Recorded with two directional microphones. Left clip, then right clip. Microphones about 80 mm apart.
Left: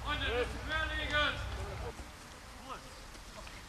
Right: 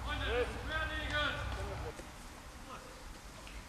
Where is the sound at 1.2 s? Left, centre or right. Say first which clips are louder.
Left 4 dB; centre.